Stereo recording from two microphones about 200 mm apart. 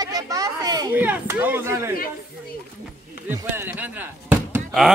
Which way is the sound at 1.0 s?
10° right (ahead or behind).